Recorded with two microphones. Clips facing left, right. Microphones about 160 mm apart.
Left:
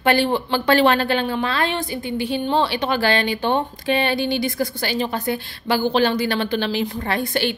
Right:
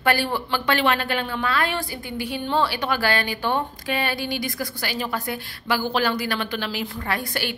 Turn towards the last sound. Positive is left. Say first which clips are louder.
# left 5 dB
turn(degrees=25)  # may be behind; listen again after turning